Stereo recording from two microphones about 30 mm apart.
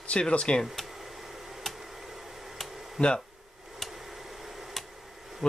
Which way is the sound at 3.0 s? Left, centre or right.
Left.